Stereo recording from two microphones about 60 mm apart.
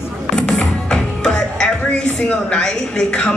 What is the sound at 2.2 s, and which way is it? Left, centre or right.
A man's voice, centre.